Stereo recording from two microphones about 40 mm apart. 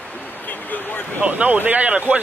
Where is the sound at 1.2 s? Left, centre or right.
Right.